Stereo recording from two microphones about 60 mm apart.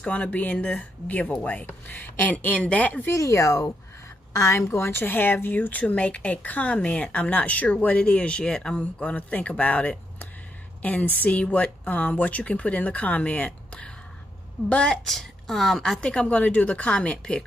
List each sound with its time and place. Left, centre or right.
0.0 s a woman's voice: left
3.1 s a woman's voice: left; by 15.0 s centre
15.0 s a woman's voice: centre
16.0 s a woman's voice: centre